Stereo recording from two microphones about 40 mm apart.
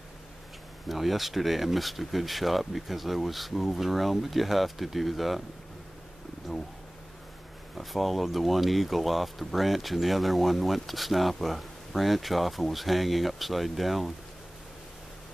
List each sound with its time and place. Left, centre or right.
0.8 s speech: centre
7.7 s speech: centre